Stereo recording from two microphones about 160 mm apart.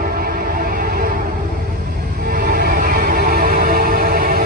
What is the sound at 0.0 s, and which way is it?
Music, 70° right (ahead or behind).